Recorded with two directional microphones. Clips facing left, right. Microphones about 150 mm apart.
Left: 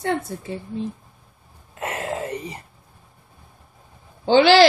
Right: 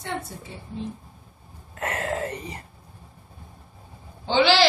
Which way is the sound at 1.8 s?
20° left (ahead or behind).